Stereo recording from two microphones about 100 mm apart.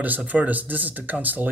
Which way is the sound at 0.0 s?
15° right (ahead or behind).